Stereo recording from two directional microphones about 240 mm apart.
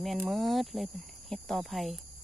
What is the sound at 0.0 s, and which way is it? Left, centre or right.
Speech, centre.